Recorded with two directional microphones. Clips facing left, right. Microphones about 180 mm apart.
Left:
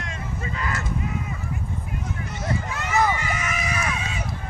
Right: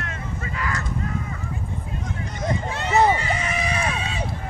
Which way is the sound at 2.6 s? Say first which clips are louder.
Right 4 dB; 30° right (ahead or behind).